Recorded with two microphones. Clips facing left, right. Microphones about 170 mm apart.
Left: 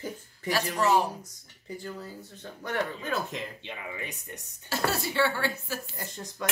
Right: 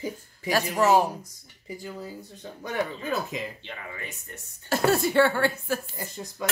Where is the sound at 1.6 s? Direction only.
10° right (ahead or behind).